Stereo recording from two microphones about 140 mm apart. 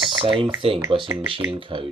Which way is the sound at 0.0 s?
40° right (ahead or behind).